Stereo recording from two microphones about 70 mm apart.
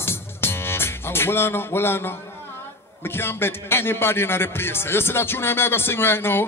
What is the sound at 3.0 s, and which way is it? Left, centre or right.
A man's voice, left.